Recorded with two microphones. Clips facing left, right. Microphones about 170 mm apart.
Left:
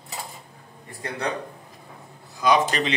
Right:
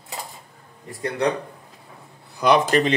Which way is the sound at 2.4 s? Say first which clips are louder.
Right 3 dB; 55° right (ahead or behind).